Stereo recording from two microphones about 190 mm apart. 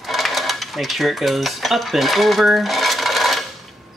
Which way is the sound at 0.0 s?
Centre (ahead or behind).